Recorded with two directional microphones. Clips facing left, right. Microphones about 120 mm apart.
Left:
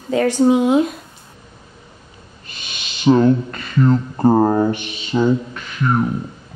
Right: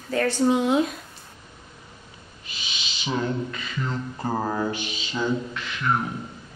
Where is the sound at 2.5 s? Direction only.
55° left (ahead or behind).